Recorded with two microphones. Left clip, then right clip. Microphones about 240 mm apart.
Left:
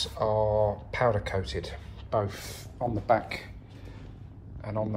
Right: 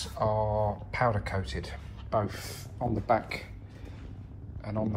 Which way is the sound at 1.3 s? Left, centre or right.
Left.